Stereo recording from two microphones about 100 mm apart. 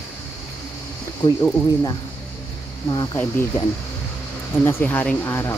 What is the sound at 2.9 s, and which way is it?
Speech, 45° left (ahead or behind).